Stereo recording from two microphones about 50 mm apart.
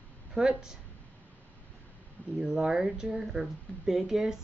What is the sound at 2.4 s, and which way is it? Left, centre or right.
Speech, centre.